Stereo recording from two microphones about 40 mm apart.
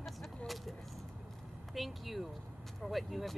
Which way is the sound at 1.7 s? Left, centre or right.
Centre.